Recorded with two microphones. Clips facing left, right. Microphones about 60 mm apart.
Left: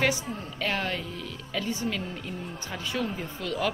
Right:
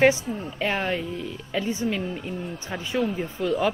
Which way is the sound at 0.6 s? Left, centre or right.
Right.